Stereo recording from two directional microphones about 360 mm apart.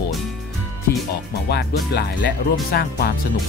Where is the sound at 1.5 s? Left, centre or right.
Left.